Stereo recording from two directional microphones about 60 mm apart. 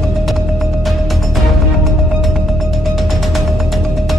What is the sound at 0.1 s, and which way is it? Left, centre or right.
Music, centre.